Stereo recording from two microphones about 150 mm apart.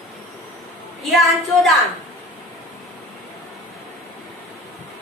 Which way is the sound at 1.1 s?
Centre (ahead or behind).